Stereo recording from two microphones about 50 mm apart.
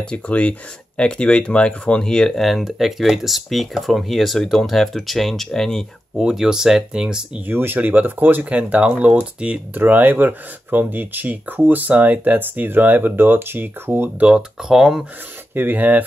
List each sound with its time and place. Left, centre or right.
0.0 s speech: left
2.4 s speech: centre
6.1 s speech: centre
7.4 s speech: right
8.5 s speech: right
9.8 s speech: right
14.6 s speech: centre
15.5 s speech: right